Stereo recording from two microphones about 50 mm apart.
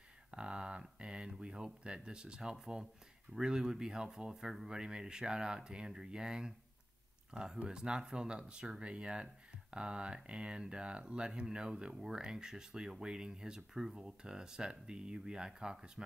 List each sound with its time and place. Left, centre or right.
0.3 s speech: centre
7.5 s speech: centre